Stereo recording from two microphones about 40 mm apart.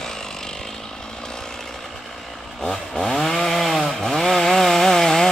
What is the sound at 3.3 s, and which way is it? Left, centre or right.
Chainsaw, centre.